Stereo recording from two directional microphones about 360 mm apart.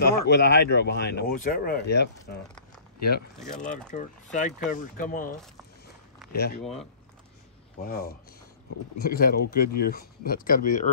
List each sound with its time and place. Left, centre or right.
0.0 s speech: left
4.4 s speech: left
7.8 s speech: left